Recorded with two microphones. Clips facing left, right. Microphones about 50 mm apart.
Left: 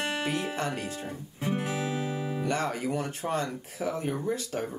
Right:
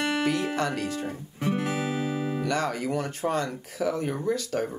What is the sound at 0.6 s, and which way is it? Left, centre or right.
Speech, left.